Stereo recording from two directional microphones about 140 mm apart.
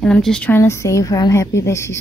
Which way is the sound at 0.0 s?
5° left (ahead or behind).